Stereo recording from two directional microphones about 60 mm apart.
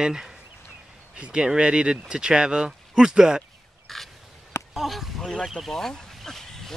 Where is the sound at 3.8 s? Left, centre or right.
Centre.